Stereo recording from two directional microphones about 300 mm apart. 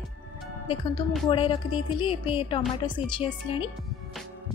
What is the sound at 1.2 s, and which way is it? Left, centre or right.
Speech, centre.